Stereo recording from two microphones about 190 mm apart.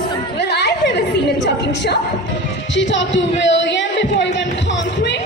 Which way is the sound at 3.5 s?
70° left (ahead or behind).